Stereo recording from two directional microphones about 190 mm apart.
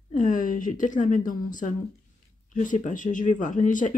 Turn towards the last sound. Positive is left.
turn(degrees=40)  # may be behind; listen again after turning